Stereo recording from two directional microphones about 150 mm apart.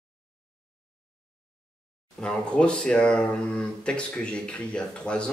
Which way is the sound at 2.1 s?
5° left (ahead or behind).